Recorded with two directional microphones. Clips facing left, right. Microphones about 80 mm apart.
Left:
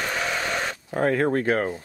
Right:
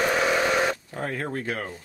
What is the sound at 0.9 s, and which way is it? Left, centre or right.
Speech, left.